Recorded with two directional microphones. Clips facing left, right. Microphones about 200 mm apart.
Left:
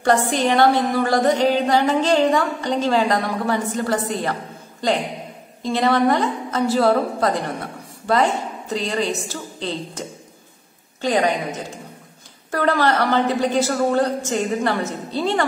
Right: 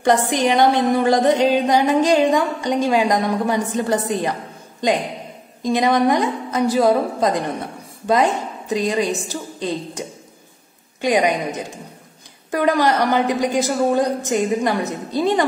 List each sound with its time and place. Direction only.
0.0 s a woman's voice: 15° right (ahead or behind)
5.6 s a woman's voice: 15° right (ahead or behind)